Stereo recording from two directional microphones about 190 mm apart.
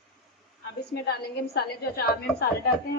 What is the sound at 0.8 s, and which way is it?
A woman's voice, 60° left (ahead or behind).